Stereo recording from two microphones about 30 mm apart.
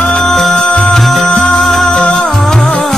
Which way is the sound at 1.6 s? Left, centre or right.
Centre.